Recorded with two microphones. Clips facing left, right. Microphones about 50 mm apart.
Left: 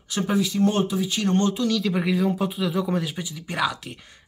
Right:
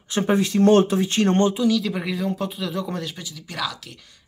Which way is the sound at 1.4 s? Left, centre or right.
Centre.